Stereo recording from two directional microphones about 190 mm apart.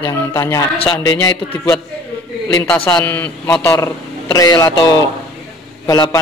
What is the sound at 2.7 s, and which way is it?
A man's voice, 5° left (ahead or behind).